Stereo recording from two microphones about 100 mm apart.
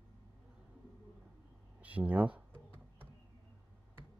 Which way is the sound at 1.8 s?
15° right (ahead or behind).